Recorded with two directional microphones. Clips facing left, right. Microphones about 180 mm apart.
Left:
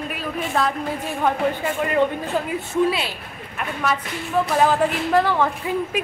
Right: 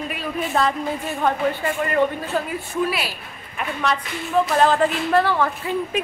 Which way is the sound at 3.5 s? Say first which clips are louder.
Right 1 dB; 5° left (ahead or behind).